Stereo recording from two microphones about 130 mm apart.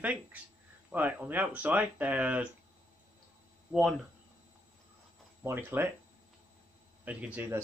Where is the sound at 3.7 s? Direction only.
Centre (ahead or behind).